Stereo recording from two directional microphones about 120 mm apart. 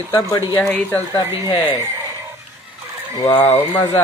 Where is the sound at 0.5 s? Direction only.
15° left (ahead or behind).